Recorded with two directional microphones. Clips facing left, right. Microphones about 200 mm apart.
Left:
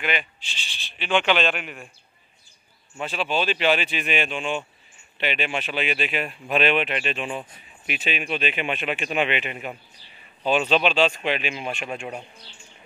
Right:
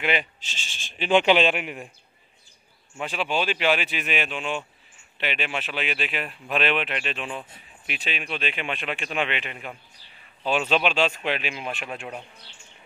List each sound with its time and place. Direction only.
0.0 s speech: 30° right (ahead or behind)
0.4 s speech: 45° right (ahead or behind)
1.3 s speech: 10° right (ahead or behind)
3.0 s speech: 10° right (ahead or behind); by 9.8 s 5° left (ahead or behind)
10.4 s speech: 5° right (ahead or behind)